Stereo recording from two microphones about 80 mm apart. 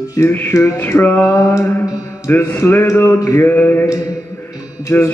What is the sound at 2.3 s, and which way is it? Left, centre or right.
Mantra, left.